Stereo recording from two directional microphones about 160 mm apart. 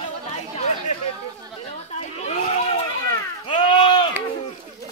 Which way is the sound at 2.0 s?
45° left (ahead or behind).